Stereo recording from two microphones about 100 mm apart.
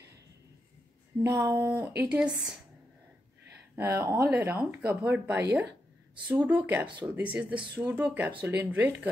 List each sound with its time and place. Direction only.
1.3 s speech: 30° right (ahead or behind)
1.7 s speech: 20° right (ahead or behind)
3.7 s speech: 30° right (ahead or behind)
4.3 s speech: 20° right (ahead or behind)